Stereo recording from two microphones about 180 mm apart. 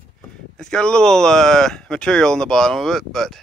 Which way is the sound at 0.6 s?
5° left (ahead or behind).